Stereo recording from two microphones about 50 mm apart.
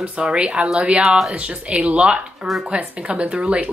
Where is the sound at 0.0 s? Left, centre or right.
Right.